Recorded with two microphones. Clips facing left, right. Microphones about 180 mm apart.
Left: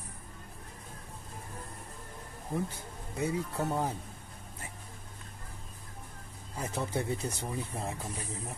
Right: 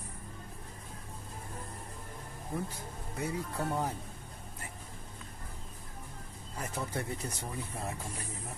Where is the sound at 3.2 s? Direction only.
15° left (ahead or behind).